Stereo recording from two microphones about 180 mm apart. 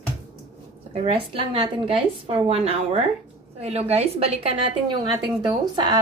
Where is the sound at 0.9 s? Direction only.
30° right (ahead or behind).